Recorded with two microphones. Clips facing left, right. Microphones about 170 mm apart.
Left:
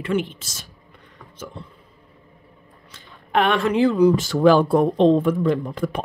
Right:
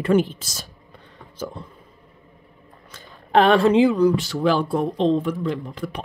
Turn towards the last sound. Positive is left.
turn(degrees=50)  # may be behind; listen again after turning